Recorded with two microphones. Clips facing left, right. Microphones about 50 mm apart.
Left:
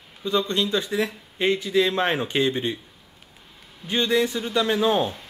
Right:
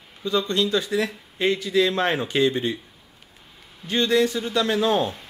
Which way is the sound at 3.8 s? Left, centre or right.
Centre.